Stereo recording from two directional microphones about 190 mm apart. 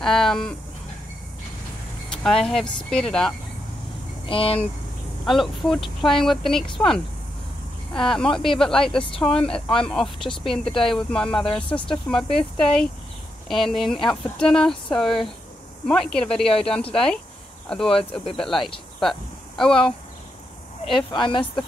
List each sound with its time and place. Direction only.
0.0 s speech: centre (ahead or behind)
2.2 s speech: centre (ahead or behind)
4.3 s speech: 30° left (ahead or behind)
5.2 s speech: centre (ahead or behind)
6.6 s speech: 25° left (ahead or behind)
7.9 s speech: 5° left (ahead or behind)
18.9 s a sound: centre (ahead or behind)
21.1 s speech: 25° left (ahead or behind)